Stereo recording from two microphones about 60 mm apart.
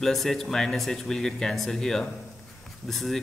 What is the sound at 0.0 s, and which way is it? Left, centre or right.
A man's voice, centre.